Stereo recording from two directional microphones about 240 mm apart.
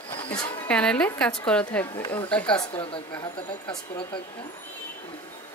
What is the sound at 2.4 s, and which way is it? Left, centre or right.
Speech, left.